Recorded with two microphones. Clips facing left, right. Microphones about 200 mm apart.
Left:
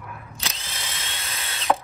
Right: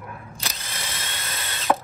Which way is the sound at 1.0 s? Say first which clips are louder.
Right 2 dB; 50° right (ahead or behind).